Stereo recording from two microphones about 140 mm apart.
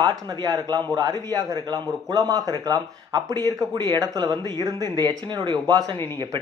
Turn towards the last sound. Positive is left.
turn(degrees=-30)  # may be behind; listen again after turning